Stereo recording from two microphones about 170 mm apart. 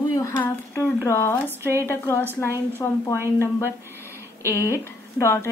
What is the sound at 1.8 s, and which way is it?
A woman's voice, 15° left (ahead or behind).